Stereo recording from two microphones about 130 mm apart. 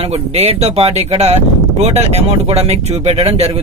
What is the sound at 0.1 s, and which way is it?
Speech, 50° right (ahead or behind).